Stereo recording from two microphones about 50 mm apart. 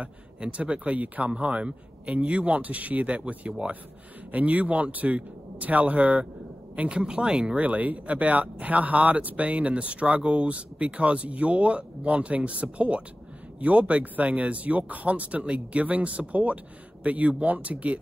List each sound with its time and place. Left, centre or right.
0.0 s speech: right
6.8 s speech: centre
7.5 s speech: right